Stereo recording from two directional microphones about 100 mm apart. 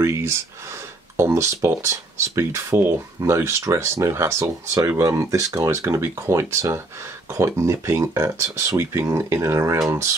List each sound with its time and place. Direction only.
0.0 s speech: 30° right (ahead or behind)